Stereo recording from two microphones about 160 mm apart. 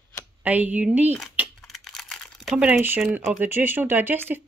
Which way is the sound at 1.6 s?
5° left (ahead or behind).